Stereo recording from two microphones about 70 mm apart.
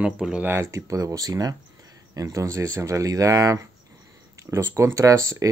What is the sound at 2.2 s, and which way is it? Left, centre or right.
Speech, right.